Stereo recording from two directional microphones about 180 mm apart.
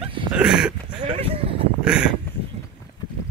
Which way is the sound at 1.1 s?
30° right (ahead or behind).